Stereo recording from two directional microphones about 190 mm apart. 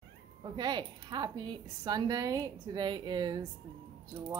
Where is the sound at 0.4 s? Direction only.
20° right (ahead or behind).